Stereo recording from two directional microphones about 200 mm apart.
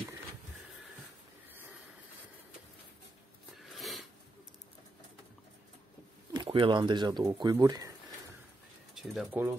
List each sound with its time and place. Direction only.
3.7 s a sound: centre (ahead or behind)
6.3 s speech: 25° right (ahead or behind)
8.9 s speech: centre (ahead or behind)